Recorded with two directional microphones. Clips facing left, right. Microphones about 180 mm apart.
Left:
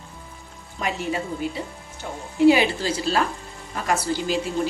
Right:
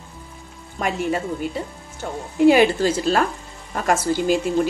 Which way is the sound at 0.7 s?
50° right (ahead or behind).